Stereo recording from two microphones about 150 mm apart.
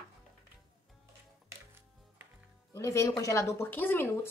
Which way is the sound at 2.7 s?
20° left (ahead or behind).